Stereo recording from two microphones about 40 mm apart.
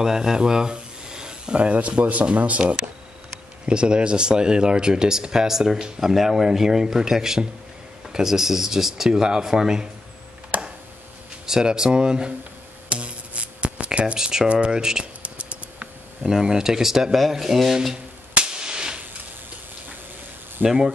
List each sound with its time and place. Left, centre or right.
0.0 s speech: centre; by 2.6 s right
3.6 s speech: right
11.4 s speech: centre
12.9 s music: right
13.8 s speech: right
15.2 s typing: right
16.3 s speech: centre
18.3 s a sound: right
20.6 s speech: centre